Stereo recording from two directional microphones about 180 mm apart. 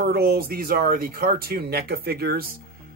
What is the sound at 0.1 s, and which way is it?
Speech, 60° right (ahead or behind).